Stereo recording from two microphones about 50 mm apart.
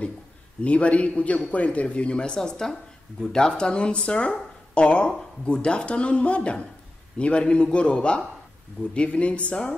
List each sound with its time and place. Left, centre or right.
0.6 s speech: left